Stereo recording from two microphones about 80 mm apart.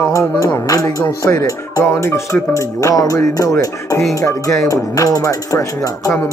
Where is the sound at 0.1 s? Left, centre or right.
Left.